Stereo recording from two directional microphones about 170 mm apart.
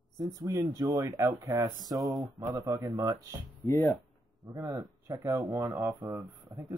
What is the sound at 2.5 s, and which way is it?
Speech, 15° right (ahead or behind).